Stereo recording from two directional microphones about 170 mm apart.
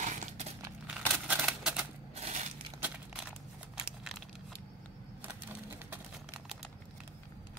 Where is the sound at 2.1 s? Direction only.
40° right (ahead or behind).